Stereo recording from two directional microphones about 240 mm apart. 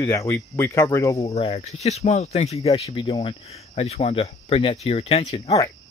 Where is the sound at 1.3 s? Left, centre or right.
Left.